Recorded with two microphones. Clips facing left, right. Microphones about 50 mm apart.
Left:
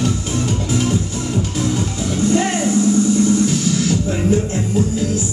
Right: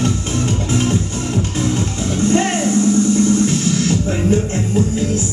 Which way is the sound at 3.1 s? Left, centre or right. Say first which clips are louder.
Right 1 dB; right.